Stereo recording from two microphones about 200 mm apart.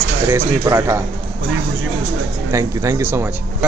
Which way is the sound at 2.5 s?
15° right (ahead or behind).